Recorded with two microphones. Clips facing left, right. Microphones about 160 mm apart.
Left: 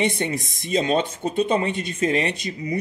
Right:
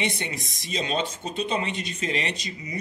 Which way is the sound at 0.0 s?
50° left (ahead or behind).